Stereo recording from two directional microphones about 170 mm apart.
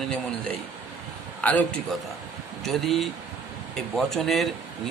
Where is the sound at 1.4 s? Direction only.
10° left (ahead or behind).